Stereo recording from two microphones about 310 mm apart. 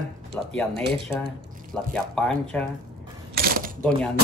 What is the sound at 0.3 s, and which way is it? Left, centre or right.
Speech, centre.